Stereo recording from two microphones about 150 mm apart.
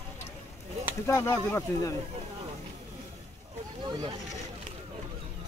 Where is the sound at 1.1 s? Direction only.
20° left (ahead or behind).